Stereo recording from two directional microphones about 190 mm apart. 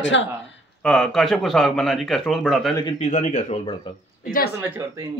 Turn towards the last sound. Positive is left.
turn(degrees=-15)  # may be behind; listen again after turning